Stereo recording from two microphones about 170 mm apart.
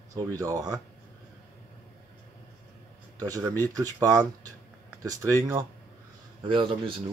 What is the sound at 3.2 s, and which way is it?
Speech, 20° right (ahead or behind).